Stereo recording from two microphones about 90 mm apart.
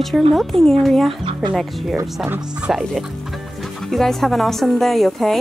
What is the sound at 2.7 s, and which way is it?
Speech, 5° right (ahead or behind).